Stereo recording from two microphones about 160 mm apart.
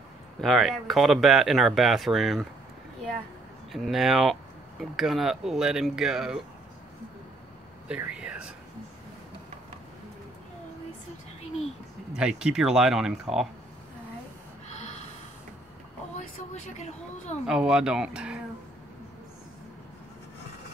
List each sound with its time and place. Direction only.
0.4 s speech: centre (ahead or behind)
3.7 s speech: centre (ahead or behind)
7.9 s speech: 5° right (ahead or behind)
12.1 s speech: 5° right (ahead or behind)
16.7 s speech: 45° left (ahead or behind)
17.5 s speech: 5° right (ahead or behind)